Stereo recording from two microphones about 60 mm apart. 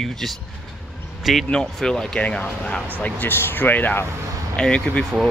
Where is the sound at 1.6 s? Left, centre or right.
Centre.